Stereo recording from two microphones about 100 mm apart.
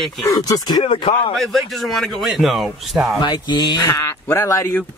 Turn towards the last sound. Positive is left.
turn(degrees=30)  # may be behind; listen again after turning